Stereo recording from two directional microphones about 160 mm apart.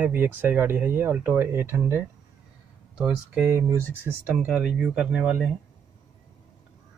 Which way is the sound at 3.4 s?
15° right (ahead or behind).